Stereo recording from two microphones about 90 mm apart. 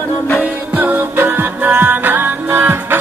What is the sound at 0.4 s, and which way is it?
Music, 20° right (ahead or behind).